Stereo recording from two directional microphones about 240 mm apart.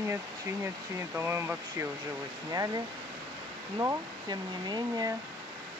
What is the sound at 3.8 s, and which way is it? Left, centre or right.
Speech, centre.